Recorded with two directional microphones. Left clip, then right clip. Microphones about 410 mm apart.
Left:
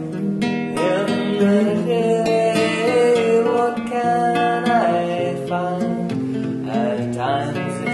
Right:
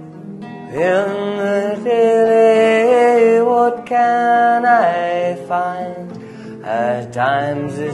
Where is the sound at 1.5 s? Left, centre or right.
Right.